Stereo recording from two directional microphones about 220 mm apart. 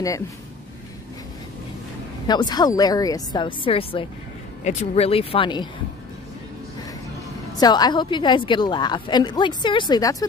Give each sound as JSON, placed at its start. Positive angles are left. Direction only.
{"t": 2.2, "sound": "a woman's voice", "side_deg": 20}
{"t": 7.5, "sound": "a woman's voice", "side_deg": 20}